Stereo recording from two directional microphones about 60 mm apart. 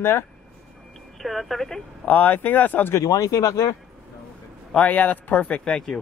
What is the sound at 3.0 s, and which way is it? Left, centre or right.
Speech, left.